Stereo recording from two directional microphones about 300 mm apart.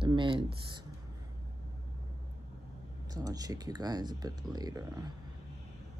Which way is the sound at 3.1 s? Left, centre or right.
Centre.